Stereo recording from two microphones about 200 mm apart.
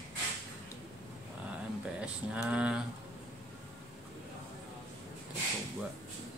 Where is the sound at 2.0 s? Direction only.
5° right (ahead or behind).